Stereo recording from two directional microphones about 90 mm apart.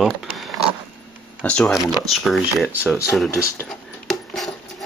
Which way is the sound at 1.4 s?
10° left (ahead or behind).